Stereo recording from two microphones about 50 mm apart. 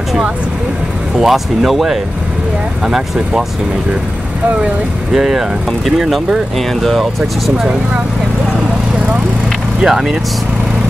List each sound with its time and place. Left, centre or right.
1.2 s speech: centre
5.1 s speech: centre
9.8 s speech: centre